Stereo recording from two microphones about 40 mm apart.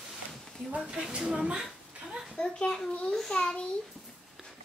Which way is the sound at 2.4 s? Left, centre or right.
Left.